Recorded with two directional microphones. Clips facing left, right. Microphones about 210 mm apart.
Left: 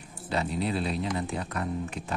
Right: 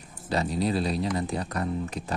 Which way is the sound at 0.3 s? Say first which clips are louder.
Right 3 dB; 40° right (ahead or behind).